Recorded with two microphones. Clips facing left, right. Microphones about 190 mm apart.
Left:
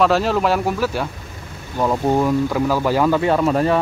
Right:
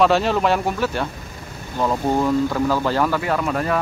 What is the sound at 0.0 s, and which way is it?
Speech, centre (ahead or behind).